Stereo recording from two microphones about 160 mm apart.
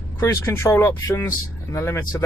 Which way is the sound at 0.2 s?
15° left (ahead or behind).